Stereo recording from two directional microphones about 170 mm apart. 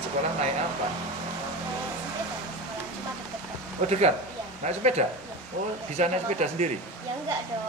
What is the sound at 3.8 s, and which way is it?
A woman's voice, 45° right (ahead or behind).